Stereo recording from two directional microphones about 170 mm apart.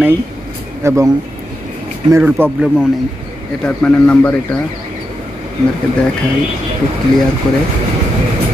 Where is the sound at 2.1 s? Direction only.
10° right (ahead or behind).